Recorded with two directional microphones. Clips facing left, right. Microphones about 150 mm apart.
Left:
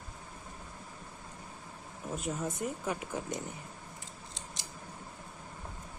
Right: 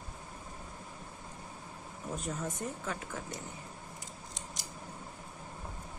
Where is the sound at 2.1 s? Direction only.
5° left (ahead or behind).